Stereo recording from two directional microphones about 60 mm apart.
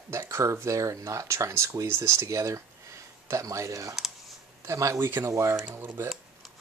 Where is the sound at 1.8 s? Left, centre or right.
Right.